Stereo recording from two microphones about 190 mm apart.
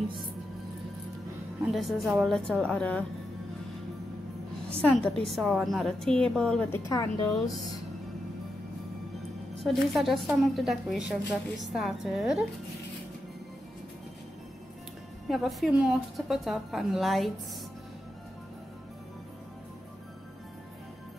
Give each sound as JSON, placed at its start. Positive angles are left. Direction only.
{"t": 1.6, "sound": "a woman's voice", "side_deg": 0}
{"t": 4.8, "sound": "a woman's voice", "side_deg": 5}
{"t": 6.9, "sound": "a woman's voice", "side_deg": 20}
{"t": 9.6, "sound": "a woman's voice", "side_deg": 0}
{"t": 15.2, "sound": "a woman's voice", "side_deg": 0}